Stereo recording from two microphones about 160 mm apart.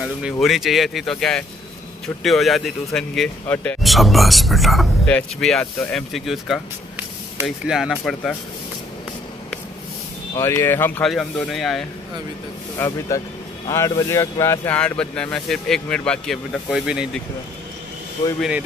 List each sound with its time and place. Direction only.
0.0 s speech: 5° right (ahead or behind)
10.3 s speech: 15° left (ahead or behind)
11.1 s speech: centre (ahead or behind)
12.7 s speech: 15° left (ahead or behind)
14.8 s speech: 5° left (ahead or behind)